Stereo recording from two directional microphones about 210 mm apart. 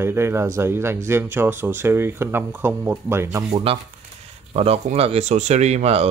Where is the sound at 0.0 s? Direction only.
10° right (ahead or behind).